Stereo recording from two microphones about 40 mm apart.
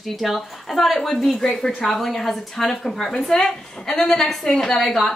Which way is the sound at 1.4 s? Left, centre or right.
Centre.